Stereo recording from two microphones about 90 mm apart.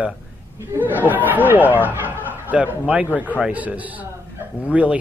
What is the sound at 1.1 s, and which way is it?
A man's voice, 20° right (ahead or behind).